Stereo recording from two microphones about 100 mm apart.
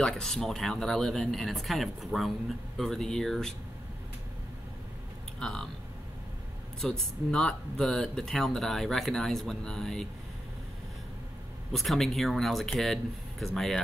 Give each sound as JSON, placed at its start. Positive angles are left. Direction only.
{"t": 0.0, "sound": "speech", "side_deg": 5}
{"t": 5.4, "sound": "speech", "side_deg": 5}
{"t": 6.8, "sound": "speech", "side_deg": 5}
{"t": 11.7, "sound": "speech", "side_deg": 0}